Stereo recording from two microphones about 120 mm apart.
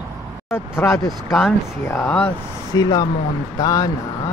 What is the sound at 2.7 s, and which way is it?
Speech, 30° left (ahead or behind).